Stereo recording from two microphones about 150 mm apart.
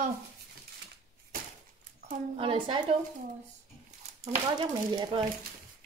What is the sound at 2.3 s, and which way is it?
Speech, 35° right (ahead or behind).